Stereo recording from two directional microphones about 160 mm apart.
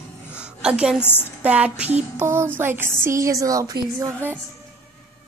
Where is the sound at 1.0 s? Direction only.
15° left (ahead or behind).